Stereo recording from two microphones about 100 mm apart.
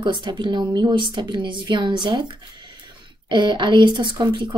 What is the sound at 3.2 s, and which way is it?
Speech, 50° right (ahead or behind).